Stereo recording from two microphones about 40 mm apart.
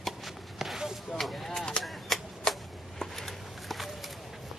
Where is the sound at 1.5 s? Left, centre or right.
Left.